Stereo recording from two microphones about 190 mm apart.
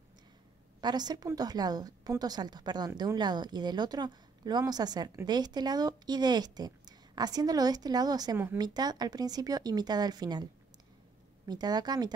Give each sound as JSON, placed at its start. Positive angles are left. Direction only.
{"t": 0.7, "sound": "a woman's voice", "side_deg": -20}